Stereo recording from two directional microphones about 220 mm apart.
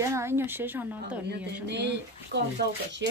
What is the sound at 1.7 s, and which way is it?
Speech, 50° right (ahead or behind).